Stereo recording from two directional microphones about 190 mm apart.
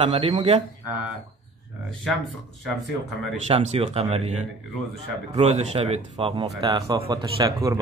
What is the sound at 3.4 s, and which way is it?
Speech, 30° right (ahead or behind).